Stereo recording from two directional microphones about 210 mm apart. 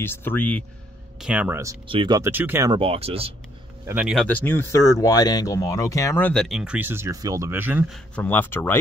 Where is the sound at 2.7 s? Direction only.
30° right (ahead or behind).